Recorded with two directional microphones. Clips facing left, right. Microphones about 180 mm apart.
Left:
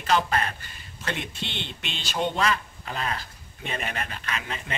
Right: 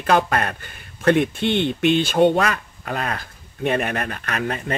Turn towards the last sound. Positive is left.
turn(degrees=-55)  # may be behind; listen again after turning